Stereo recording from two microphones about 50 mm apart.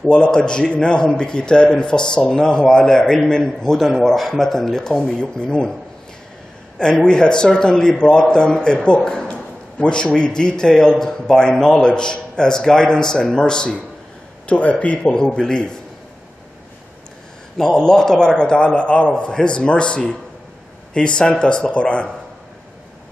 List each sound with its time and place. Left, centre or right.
0.0 s a man's voice: centre
6.8 s speech: centre
14.4 s a man's voice: left
15.1 s speech: centre
17.6 s a man's voice: centre